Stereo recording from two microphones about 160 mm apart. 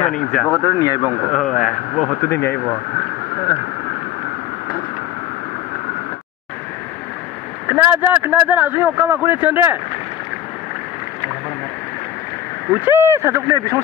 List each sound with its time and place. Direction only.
0.0 s speech: 55° left (ahead or behind)
0.5 s speech: 20° left (ahead or behind)
1.3 s speech: 5° left (ahead or behind)
2.3 s speech: 90° left
7.6 s speech: 15° right (ahead or behind)
12.8 s speech: 15° right (ahead or behind)